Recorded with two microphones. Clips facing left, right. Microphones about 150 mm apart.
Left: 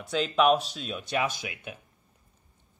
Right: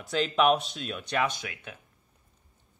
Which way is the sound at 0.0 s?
Centre (ahead or behind).